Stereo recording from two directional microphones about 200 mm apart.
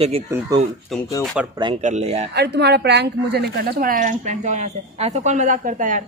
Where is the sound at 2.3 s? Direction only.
55° right (ahead or behind); by 6.0 s 40° right (ahead or behind).